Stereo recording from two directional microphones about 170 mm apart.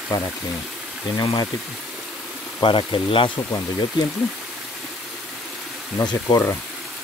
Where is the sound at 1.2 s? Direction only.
25° left (ahead or behind).